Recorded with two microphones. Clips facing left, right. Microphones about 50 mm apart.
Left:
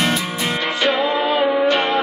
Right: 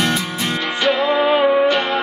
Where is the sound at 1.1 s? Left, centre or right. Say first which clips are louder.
Right 3 dB; right.